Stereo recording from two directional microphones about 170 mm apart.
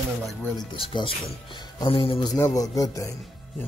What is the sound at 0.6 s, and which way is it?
Speech, 30° left (ahead or behind).